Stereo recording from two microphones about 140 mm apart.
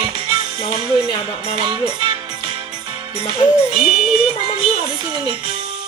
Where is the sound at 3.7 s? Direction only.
30° right (ahead or behind).